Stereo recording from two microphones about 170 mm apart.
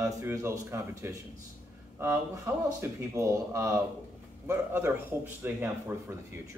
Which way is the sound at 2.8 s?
15° right (ahead or behind).